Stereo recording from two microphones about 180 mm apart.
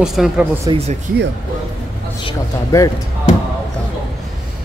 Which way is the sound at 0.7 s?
35° right (ahead or behind).